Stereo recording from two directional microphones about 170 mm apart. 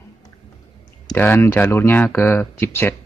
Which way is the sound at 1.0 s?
10° left (ahead or behind).